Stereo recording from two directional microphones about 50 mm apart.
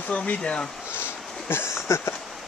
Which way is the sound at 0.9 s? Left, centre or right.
Left.